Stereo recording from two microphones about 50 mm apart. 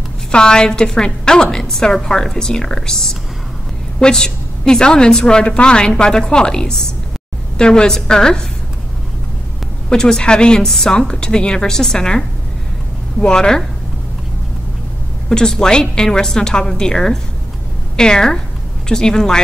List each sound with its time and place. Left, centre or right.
0.3 s a woman's voice: centre
9.8 s a woman's voice: centre
15.2 s a woman's voice: centre